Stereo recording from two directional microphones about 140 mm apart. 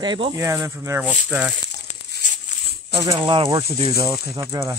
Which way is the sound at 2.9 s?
40° right (ahead or behind).